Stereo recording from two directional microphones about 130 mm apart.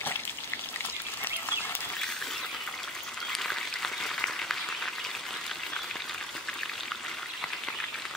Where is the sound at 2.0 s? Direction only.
5° left (ahead or behind).